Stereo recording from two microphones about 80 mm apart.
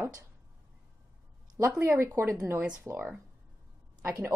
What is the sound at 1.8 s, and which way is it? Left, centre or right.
Speech, right.